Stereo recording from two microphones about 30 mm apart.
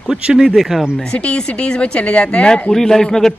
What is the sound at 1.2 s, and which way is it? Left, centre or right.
A woman's voice, left.